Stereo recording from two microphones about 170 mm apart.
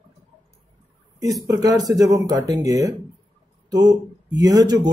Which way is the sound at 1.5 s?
20° right (ahead or behind).